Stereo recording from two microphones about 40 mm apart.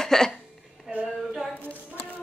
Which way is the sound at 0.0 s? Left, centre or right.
Centre.